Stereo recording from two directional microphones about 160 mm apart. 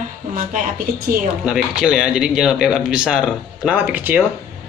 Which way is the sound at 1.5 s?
5° right (ahead or behind).